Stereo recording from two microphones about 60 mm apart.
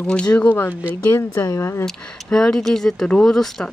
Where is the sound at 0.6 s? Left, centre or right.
Left.